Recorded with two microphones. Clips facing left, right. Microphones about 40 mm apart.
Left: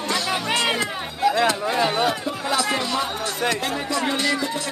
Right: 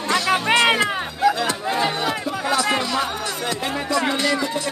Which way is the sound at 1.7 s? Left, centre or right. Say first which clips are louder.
Left 1 dB; centre.